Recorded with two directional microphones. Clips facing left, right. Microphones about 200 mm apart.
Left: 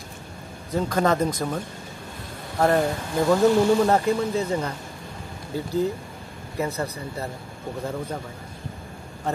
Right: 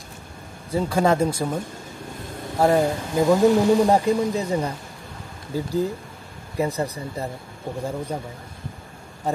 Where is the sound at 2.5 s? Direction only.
10° right (ahead or behind).